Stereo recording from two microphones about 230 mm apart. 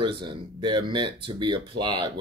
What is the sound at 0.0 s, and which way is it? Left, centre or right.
Speech, right.